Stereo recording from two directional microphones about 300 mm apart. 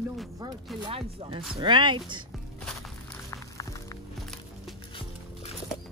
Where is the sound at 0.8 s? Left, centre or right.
Centre.